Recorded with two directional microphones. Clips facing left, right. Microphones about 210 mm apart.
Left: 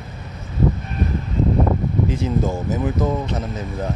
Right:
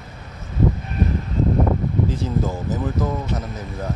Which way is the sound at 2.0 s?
20° left (ahead or behind).